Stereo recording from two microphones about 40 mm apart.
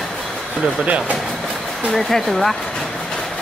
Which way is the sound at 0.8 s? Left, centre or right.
Right.